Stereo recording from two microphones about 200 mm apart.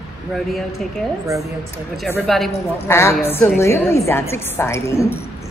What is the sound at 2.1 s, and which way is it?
Speech, centre (ahead or behind).